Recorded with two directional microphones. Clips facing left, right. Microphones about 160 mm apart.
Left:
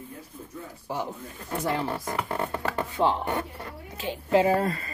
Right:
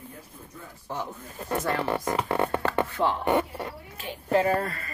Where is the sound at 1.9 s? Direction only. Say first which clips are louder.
Right 4 dB; 85° right.